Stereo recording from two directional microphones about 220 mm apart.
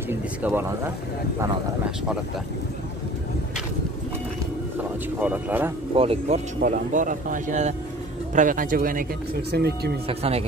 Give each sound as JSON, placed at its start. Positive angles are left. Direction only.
{"t": 0.1, "sound": "speech", "side_deg": -10}
{"t": 5.2, "sound": "speech", "side_deg": -10}
{"t": 5.9, "sound": "speech", "side_deg": -25}
{"t": 10.0, "sound": "speech", "side_deg": -25}